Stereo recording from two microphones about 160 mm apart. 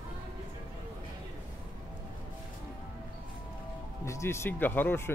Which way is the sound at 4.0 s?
15° left (ahead or behind).